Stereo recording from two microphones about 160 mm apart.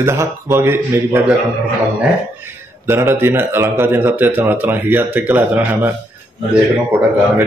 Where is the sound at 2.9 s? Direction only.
15° right (ahead or behind).